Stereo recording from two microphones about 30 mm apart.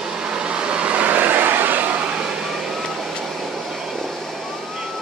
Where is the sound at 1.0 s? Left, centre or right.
Right.